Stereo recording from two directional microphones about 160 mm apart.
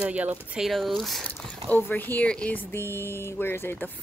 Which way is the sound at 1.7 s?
10° left (ahead or behind).